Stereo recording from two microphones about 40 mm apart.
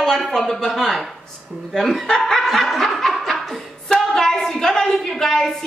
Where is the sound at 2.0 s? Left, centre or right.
Centre.